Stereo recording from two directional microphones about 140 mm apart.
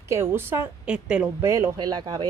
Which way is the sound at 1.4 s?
20° right (ahead or behind).